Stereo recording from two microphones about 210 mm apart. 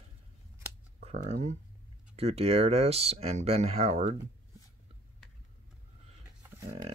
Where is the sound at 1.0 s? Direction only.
35° right (ahead or behind).